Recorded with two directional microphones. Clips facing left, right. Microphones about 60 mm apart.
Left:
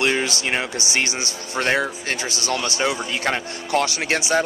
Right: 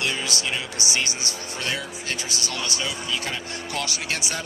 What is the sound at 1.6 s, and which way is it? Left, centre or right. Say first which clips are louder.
Speech: left 10 dB; left.